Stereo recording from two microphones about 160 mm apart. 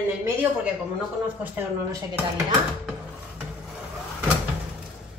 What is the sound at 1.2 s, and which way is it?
Speech, 10° right (ahead or behind).